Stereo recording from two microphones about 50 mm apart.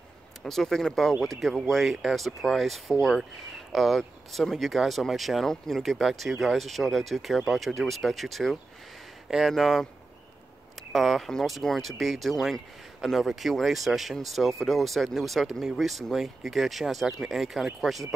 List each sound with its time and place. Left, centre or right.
0.4 s speech: centre
10.9 s speech: centre